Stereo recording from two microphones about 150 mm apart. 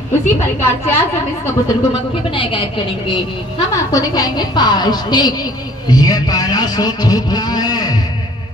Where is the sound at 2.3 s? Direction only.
35° left (ahead or behind).